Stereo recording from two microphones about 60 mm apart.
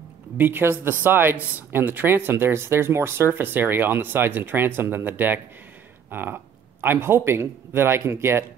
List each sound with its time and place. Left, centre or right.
0.4 s a man's voice: right